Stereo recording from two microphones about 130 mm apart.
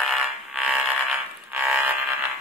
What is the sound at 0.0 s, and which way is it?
Fire alarm, centre (ahead or behind).